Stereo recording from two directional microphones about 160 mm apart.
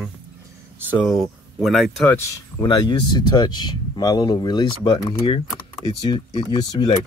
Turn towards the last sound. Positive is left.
turn(degrees=25)  # may be behind; listen again after turning